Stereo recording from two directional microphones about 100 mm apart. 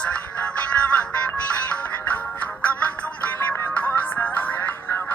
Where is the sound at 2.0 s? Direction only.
15° left (ahead or behind).